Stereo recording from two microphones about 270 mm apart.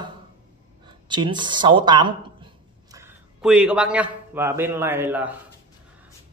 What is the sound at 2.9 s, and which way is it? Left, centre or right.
A man's voice, centre.